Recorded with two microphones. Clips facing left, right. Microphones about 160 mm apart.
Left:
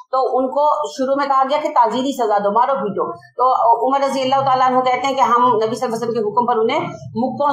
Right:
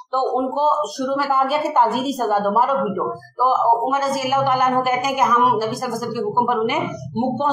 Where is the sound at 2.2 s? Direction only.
25° left (ahead or behind).